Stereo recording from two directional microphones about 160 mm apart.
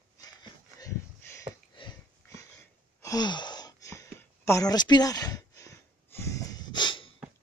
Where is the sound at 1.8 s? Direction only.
30° left (ahead or behind).